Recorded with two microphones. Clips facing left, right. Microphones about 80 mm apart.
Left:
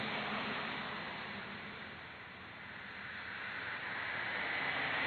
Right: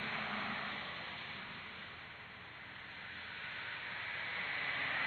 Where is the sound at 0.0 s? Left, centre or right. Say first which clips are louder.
Left 2 dB; left.